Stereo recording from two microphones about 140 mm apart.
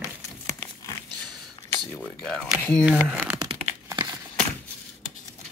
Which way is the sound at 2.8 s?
5° right (ahead or behind).